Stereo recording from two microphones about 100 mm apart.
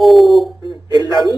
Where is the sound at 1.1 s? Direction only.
45° right (ahead or behind).